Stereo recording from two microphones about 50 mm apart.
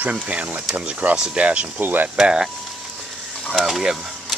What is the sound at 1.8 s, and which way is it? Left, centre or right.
Speech, right.